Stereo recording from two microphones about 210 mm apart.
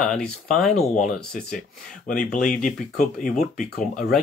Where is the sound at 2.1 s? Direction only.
40° left (ahead or behind).